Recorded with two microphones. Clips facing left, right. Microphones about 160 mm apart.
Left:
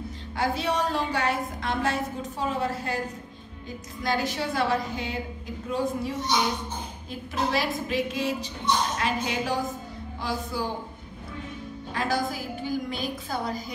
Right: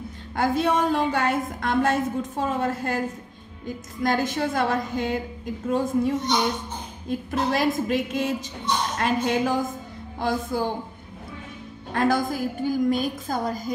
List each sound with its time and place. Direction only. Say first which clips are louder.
0.4 s a woman's voice: right 5 dB; 50° right (ahead or behind)
4.0 s a woman's voice: right 4 dB; 50° right (ahead or behind)
11.9 s a woman's voice: right 5 dB; 50° right (ahead or behind)